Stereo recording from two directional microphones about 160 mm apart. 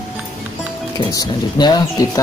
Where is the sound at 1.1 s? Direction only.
25° left (ahead or behind).